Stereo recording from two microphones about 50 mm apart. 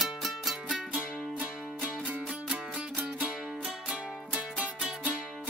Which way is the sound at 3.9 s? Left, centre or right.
Right.